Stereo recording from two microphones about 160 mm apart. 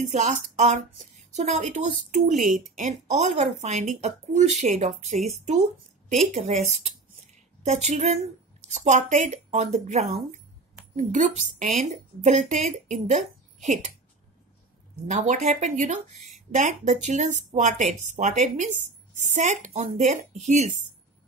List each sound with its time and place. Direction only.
0.0 s speech: 45° right (ahead or behind)
15.0 s speech: 50° right (ahead or behind)